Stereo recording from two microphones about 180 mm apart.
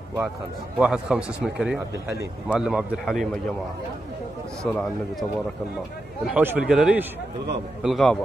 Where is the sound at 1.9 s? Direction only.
15° right (ahead or behind).